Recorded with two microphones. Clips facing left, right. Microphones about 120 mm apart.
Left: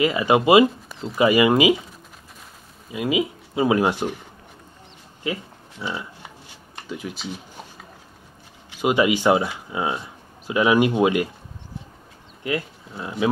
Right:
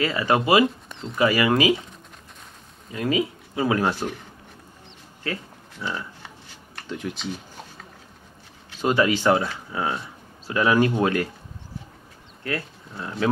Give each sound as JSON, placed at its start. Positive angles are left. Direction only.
{"t": 0.0, "sound": "speech", "side_deg": 15}
{"t": 0.8, "sound": "a sound", "side_deg": 5}
{"t": 1.1, "sound": "speech", "side_deg": 20}
{"t": 2.9, "sound": "speech", "side_deg": 10}
{"t": 5.2, "sound": "a sound", "side_deg": 15}
{"t": 6.9, "sound": "speech", "side_deg": 5}
{"t": 8.8, "sound": "speech", "side_deg": 15}
{"t": 12.4, "sound": "speech", "side_deg": 15}